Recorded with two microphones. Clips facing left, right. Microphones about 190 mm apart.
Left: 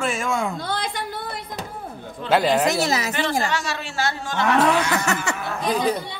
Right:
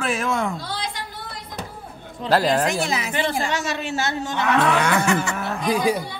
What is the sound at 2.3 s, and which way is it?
Speech, centre (ahead or behind).